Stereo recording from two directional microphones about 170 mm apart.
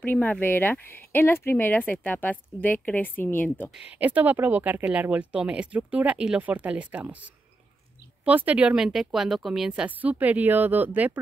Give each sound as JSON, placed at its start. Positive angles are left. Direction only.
{"t": 0.0, "sound": "speech", "side_deg": 10}
{"t": 3.7, "sound": "speech", "side_deg": -5}
{"t": 8.3, "sound": "speech", "side_deg": -10}